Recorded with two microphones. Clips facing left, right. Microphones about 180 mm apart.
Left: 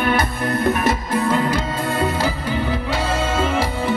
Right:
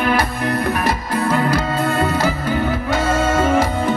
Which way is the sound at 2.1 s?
15° left (ahead or behind).